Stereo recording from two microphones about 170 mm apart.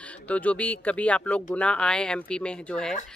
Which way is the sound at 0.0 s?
10° left (ahead or behind).